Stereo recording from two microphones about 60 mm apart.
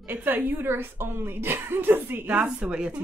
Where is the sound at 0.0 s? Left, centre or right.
Right.